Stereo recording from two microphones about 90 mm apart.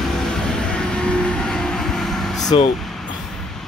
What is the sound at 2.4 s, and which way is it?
Speech, 50° left (ahead or behind).